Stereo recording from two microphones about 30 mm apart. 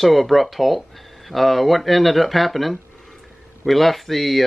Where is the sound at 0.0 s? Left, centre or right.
Centre.